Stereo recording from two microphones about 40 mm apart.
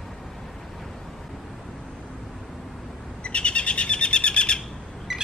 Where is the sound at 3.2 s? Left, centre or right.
Left.